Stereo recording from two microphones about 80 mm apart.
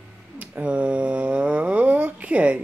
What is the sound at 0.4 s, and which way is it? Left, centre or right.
Speech, centre.